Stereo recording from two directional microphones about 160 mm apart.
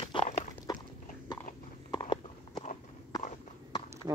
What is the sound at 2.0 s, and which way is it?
Clip-clop, 30° left (ahead or behind).